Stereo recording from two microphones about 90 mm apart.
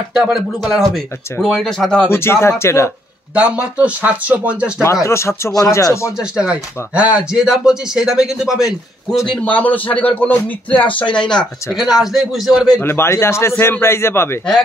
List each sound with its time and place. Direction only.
0.1 s speech: 5° right (ahead or behind)
2.0 s a man's voice: 30° left (ahead or behind)
3.3 s speech: 15° right (ahead or behind)
5.0 s speech: 30° left (ahead or behind)
6.3 s speech: 15° right (ahead or behind)
9.3 s speech: 15° left (ahead or behind)
11.1 s speech: 10° left (ahead or behind)
11.8 s speech: 5° right (ahead or behind)
12.8 s a man's voice: 30° left (ahead or behind)